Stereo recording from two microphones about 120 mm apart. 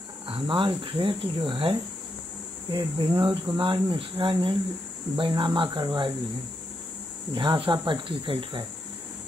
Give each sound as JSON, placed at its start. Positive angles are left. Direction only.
{"t": 0.3, "sound": "speech", "side_deg": -45}
{"t": 7.3, "sound": "speech", "side_deg": -45}